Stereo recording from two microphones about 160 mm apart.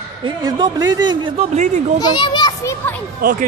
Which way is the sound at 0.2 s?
25° right (ahead or behind).